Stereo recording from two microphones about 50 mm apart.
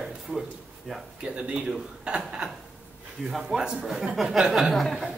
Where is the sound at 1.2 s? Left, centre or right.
Right.